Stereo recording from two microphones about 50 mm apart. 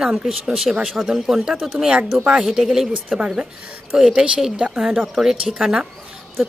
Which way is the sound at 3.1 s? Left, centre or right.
Centre.